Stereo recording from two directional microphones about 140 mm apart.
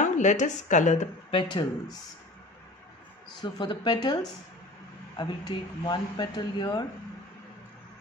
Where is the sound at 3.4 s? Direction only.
30° left (ahead or behind).